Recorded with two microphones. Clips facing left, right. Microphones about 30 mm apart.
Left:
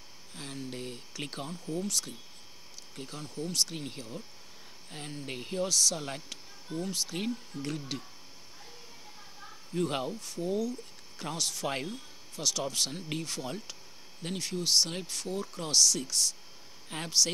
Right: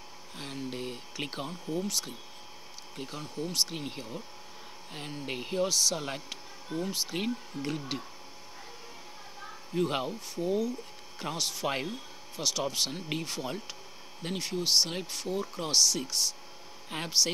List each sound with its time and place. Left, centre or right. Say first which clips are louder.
0.4 s speech: right 2 dB; centre
9.8 s speech: right 2 dB; centre